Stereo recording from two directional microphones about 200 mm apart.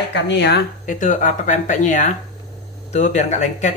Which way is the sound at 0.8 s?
40° left (ahead or behind).